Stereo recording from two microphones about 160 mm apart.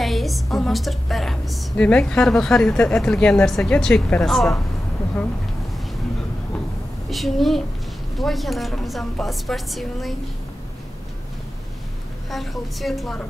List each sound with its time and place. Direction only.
0.0 s a woman's voice: centre (ahead or behind)
7.1 s a woman's voice: centre (ahead or behind)
12.3 s a woman's voice: centre (ahead or behind)